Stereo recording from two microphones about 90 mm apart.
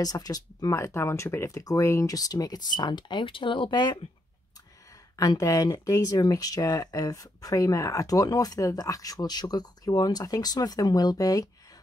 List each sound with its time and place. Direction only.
0.0 s speech: 45° left (ahead or behind)
0.7 s speech: 30° left (ahead or behind); by 4.0 s 60° left (ahead or behind)
5.1 s speech: 40° left (ahead or behind)